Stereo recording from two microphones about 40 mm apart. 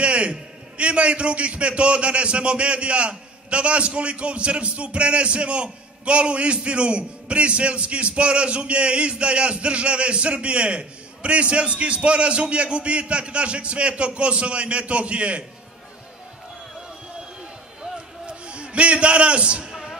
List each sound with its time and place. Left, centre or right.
0.0 s a man's voice: right
17.9 s a sound: right
19.7 s music: centre